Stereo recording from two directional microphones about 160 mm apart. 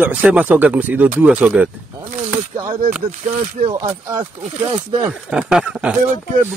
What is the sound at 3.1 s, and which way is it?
Speech, 55° right (ahead or behind).